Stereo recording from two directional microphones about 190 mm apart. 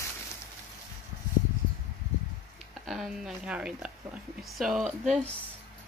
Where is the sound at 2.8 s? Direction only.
Centre (ahead or behind).